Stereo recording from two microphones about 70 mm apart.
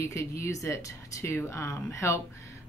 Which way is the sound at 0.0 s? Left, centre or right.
Left.